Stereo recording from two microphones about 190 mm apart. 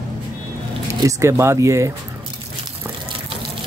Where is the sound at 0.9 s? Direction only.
15° right (ahead or behind).